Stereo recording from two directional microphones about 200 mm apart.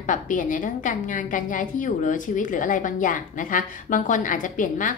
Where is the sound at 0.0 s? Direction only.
40° left (ahead or behind).